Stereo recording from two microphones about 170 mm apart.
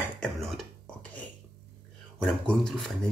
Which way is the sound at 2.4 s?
5° left (ahead or behind).